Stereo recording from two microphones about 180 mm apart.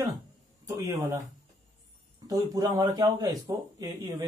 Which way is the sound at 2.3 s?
20° right (ahead or behind).